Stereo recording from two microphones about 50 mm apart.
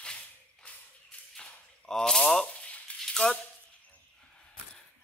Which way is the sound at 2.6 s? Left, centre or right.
Left.